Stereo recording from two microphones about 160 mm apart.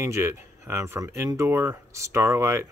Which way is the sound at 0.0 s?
15° right (ahead or behind).